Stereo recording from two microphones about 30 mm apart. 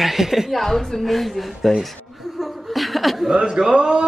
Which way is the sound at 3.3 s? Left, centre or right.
Right.